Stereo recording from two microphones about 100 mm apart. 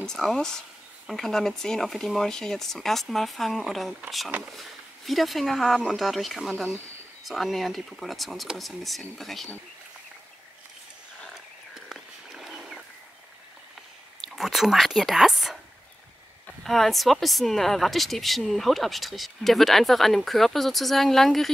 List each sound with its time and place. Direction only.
0.0 s speech: 5° left (ahead or behind)
11.7 s a sound: 5° right (ahead or behind)
14.2 s speech: 5° right (ahead or behind)
16.6 s speech: centre (ahead or behind)